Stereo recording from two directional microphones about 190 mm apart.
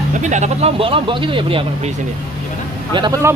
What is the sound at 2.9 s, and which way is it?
Speech, 20° right (ahead or behind).